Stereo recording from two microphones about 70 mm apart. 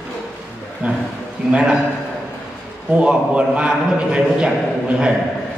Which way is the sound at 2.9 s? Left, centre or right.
Centre.